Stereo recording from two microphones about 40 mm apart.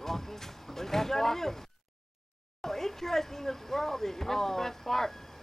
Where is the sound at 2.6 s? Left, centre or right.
Centre.